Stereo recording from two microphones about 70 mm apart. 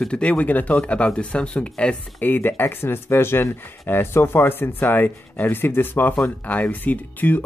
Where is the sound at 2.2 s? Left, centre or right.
Left.